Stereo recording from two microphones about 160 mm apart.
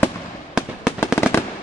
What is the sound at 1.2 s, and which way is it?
Fireworks, 15° left (ahead or behind).